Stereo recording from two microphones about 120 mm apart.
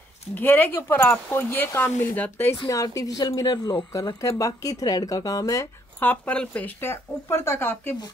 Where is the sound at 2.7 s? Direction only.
30° left (ahead or behind).